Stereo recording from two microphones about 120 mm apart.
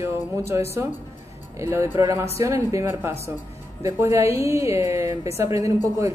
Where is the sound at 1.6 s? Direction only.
20° right (ahead or behind).